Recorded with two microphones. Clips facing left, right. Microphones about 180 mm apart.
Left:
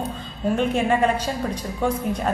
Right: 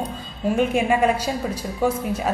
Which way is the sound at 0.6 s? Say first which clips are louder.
Right 1 dB; 10° right (ahead or behind).